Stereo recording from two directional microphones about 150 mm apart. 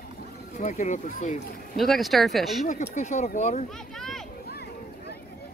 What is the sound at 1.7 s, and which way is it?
Speech, centre (ahead or behind).